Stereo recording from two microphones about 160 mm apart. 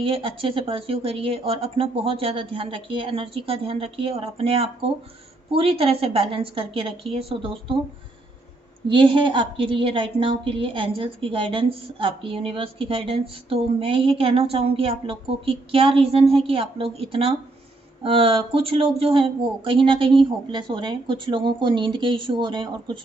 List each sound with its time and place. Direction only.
0.0 s a woman's voice: 35° right (ahead or behind)
8.8 s a woman's voice: 30° right (ahead or behind)